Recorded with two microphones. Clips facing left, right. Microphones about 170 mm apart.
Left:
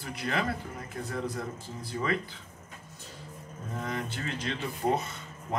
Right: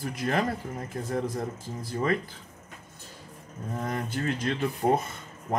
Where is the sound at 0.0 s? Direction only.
45° right (ahead or behind).